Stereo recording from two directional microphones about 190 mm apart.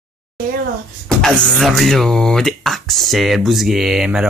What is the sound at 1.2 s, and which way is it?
Speech, 5° left (ahead or behind).